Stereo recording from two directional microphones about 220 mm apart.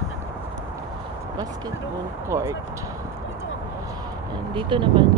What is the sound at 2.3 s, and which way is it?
Speech, 15° right (ahead or behind).